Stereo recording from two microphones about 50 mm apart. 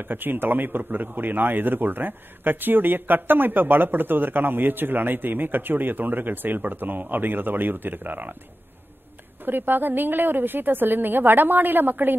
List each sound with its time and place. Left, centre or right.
0.0 s a man's voice: right
9.4 s a man's voice: right